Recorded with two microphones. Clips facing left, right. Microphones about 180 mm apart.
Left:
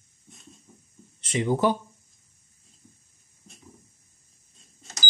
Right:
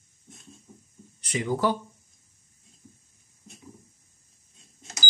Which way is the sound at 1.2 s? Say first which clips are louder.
Left 3 dB; 25° left (ahead or behind).